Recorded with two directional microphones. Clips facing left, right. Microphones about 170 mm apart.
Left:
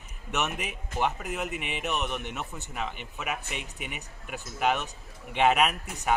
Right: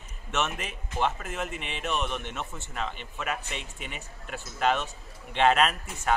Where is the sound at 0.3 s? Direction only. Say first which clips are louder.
Even; 15° left (ahead or behind).